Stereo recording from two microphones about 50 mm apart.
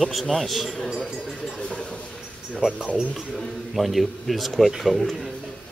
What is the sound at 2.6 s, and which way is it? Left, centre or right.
Speech, centre.